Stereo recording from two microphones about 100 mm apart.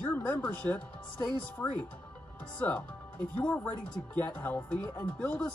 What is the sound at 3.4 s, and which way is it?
Speech, 10° left (ahead or behind).